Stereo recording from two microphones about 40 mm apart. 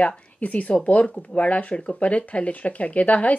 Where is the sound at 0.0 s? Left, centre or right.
Left.